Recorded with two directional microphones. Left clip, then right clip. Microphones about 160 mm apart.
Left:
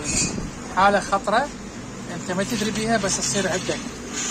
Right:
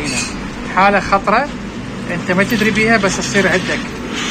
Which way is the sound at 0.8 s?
10° left (ahead or behind).